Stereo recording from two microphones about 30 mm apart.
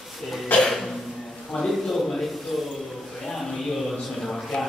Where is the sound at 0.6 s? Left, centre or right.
Centre.